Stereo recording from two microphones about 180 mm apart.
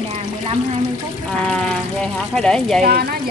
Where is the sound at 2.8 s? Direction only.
60° right (ahead or behind).